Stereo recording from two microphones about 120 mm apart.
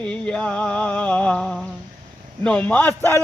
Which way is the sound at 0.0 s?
10° left (ahead or behind).